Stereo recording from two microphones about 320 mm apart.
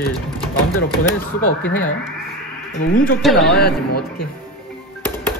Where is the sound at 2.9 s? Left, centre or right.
Left.